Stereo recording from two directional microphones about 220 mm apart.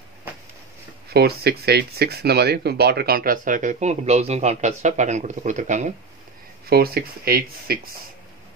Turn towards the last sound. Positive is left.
turn(degrees=-45)  # may be behind; listen again after turning